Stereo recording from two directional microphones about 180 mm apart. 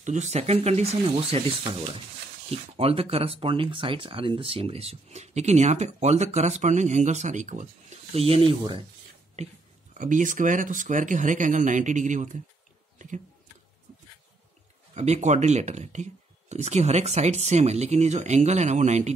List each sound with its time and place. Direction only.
0.0 s speech: 40° right (ahead or behind)
2.8 s speech: 30° right (ahead or behind)
9.9 s speech: 45° right (ahead or behind)
15.0 s speech: 40° right (ahead or behind)